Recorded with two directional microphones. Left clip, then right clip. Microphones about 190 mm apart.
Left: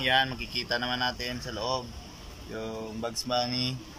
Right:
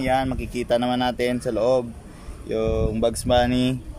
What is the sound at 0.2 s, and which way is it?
Speech, 50° right (ahead or behind).